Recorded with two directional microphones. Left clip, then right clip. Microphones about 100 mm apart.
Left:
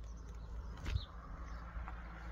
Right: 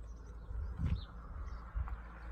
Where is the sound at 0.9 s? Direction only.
15° right (ahead or behind).